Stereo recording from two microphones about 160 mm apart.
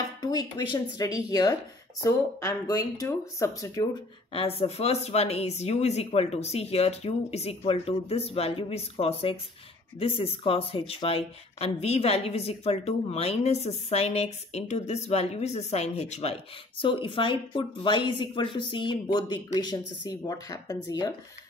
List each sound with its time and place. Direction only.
0.2 s speech: 25° left (ahead or behind)
4.3 s speech: 35° left (ahead or behind)